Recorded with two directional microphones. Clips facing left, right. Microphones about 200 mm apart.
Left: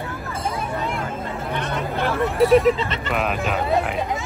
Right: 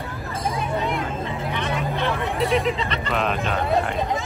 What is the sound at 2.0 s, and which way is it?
Hubbub, 50° left (ahead or behind).